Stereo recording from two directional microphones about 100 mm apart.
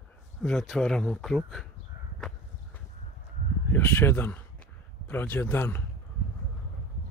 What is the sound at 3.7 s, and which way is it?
Speech, 20° left (ahead or behind).